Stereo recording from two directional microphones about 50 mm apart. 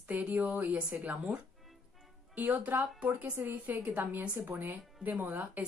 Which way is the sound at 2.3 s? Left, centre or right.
Right.